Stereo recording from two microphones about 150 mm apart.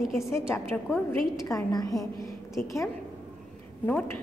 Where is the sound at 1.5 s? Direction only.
25° left (ahead or behind).